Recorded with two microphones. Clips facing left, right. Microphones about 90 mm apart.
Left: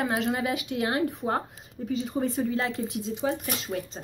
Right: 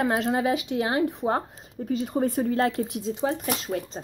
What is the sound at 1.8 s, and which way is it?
Speech, 45° right (ahead or behind).